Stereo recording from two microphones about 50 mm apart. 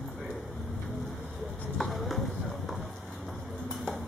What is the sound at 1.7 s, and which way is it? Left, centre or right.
Clip-clop, centre.